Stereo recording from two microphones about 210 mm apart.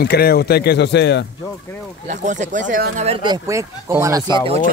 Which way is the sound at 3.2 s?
15° right (ahead or behind).